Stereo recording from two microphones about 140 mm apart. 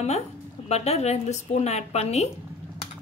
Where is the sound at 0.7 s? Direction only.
50° left (ahead or behind).